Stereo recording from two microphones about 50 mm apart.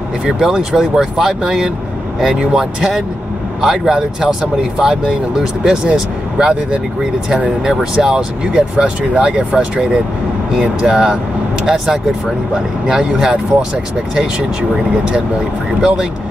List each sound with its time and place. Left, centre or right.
0.2 s speech: centre